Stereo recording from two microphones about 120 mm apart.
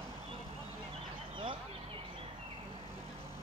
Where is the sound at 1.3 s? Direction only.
45° right (ahead or behind).